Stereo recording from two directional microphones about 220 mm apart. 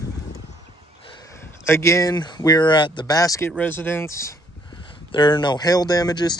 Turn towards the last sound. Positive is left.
turn(degrees=20)  # may be behind; listen again after turning